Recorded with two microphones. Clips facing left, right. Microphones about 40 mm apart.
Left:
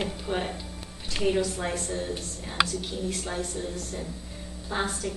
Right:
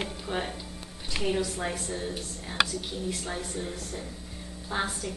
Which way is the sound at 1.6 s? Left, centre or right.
Centre.